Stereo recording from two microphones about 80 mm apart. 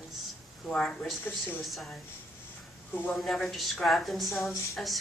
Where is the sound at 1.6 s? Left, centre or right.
Centre.